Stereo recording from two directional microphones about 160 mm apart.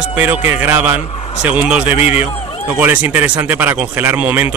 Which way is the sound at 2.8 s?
10° right (ahead or behind).